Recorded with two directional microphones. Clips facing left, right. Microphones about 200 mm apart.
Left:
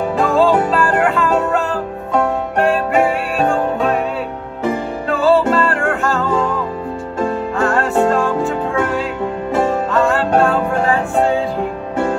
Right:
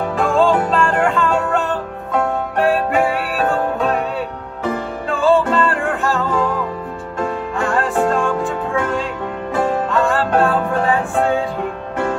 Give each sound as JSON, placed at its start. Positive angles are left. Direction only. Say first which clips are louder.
{"t": 0.2, "sound": "music", "louder": "left 1 dB", "side_deg": 0}
{"t": 5.1, "sound": "music", "louder": "left 1 dB", "side_deg": 0}
{"t": 7.7, "sound": "music", "louder": "left 1 dB", "side_deg": 0}